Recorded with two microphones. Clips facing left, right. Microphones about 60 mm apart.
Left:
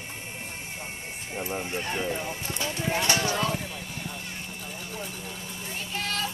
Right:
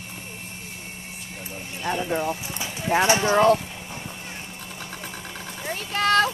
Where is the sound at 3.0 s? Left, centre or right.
Right.